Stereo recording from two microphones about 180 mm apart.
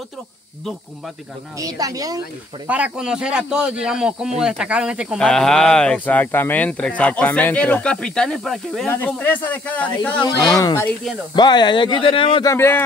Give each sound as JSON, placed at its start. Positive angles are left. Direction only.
{"t": 1.6, "sound": "speech", "side_deg": -20}
{"t": 2.7, "sound": "a man's voice", "side_deg": -5}
{"t": 12.4, "sound": "speech", "side_deg": 15}